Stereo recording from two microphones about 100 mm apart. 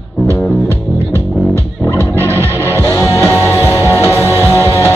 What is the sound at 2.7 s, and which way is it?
Music, 30° left (ahead or behind).